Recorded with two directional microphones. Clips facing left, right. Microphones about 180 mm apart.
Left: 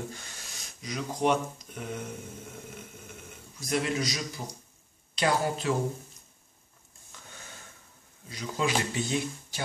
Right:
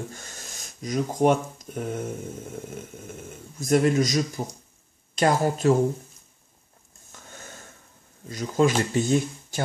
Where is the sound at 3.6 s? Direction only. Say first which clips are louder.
Right 9 dB; 45° right (ahead or behind).